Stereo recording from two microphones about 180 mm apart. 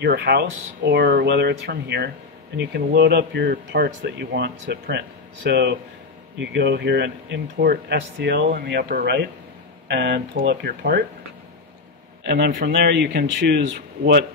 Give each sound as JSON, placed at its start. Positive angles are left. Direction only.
{"t": 0.0, "sound": "speech", "side_deg": -60}
{"t": 12.3, "sound": "speech", "side_deg": -65}